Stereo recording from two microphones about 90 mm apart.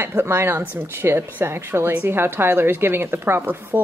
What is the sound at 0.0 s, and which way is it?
A woman's voice, 25° right (ahead or behind).